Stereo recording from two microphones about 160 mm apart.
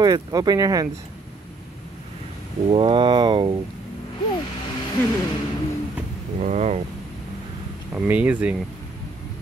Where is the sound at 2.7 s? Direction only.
35° right (ahead or behind).